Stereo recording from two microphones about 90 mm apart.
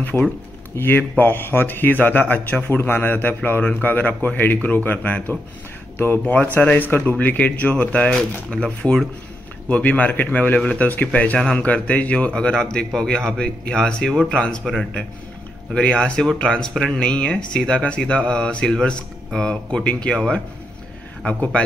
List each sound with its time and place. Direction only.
0.0 s a man's voice: 20° left (ahead or behind)
21.2 s a man's voice: 10° left (ahead or behind)